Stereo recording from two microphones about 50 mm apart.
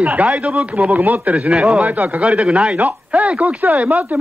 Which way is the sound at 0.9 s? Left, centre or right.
Right.